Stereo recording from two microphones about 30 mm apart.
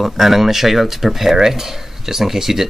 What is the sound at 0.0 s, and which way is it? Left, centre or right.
Speech, centre.